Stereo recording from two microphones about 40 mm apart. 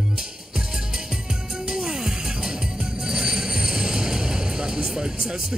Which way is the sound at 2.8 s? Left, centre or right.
Centre.